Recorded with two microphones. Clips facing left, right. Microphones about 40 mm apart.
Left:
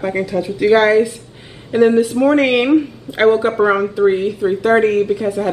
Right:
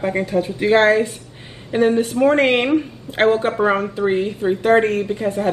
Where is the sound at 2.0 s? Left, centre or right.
Right.